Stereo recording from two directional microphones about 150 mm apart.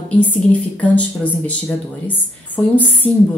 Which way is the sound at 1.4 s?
10° left (ahead or behind).